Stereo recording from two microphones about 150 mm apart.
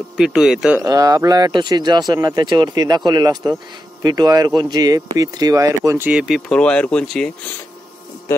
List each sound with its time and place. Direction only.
0.2 s speech: 5° right (ahead or behind)
0.8 s speech: 25° right (ahead or behind)
6.0 s speech: 5° right (ahead or behind)